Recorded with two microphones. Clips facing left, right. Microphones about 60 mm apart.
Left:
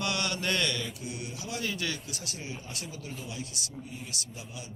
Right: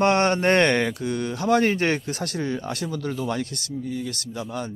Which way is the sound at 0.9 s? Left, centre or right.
Right.